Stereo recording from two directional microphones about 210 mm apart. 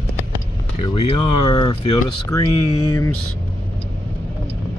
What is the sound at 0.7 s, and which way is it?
Speech, 25° left (ahead or behind).